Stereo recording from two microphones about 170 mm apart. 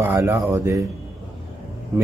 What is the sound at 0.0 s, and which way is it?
Speech, 15° right (ahead or behind).